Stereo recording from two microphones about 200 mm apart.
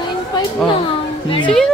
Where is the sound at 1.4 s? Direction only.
5° left (ahead or behind).